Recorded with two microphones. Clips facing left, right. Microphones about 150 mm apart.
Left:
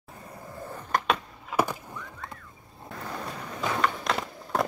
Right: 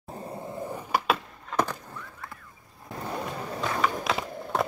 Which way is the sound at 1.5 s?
10° left (ahead or behind).